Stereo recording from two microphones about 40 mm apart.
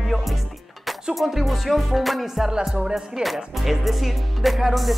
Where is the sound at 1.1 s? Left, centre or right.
Centre.